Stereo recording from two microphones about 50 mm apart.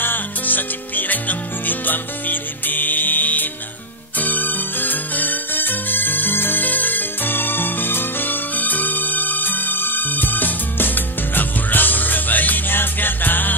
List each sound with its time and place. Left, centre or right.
0.0 s music: left